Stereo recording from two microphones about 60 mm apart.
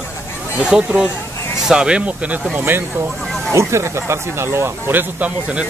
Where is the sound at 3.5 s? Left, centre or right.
Right.